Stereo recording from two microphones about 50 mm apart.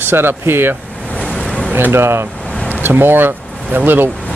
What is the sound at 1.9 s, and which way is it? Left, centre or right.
Speech, right.